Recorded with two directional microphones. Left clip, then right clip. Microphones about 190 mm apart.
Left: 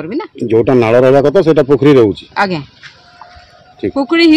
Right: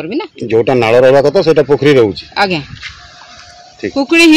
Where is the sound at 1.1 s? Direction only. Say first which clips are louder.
Even; 65° left (ahead or behind).